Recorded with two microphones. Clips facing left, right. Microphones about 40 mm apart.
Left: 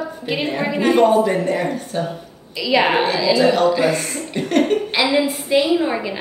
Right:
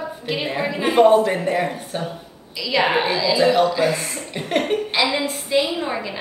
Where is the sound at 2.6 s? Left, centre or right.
Centre.